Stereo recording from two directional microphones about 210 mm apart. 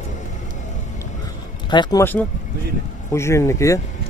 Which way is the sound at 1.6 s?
20° left (ahead or behind).